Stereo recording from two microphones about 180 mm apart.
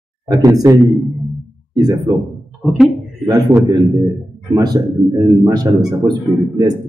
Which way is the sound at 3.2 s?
20° right (ahead or behind).